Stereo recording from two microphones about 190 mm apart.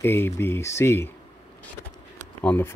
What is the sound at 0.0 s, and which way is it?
Speech, 10° left (ahead or behind).